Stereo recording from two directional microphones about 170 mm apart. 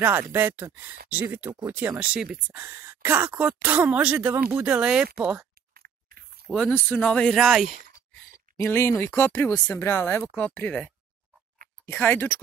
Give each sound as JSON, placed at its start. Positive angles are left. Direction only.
{"t": 0.0, "sound": "speech", "side_deg": -10}
{"t": 5.8, "sound": "biting", "side_deg": -60}
{"t": 6.5, "sound": "speech", "side_deg": 10}
{"t": 8.5, "sound": "speech", "side_deg": 15}